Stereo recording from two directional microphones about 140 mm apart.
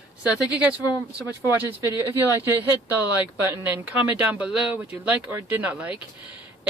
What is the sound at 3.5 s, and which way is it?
Speech, 10° right (ahead or behind).